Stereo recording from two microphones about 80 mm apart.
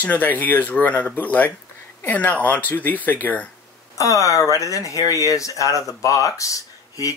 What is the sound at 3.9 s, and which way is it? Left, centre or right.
Speech, left.